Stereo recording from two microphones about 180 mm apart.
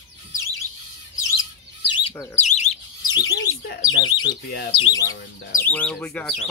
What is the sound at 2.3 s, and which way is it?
Bird, 40° left (ahead or behind).